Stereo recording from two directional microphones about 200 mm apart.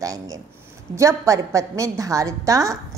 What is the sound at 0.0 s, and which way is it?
A woman's voice, 15° right (ahead or behind).